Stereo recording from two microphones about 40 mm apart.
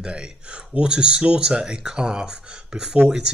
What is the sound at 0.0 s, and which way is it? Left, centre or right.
Speech, right.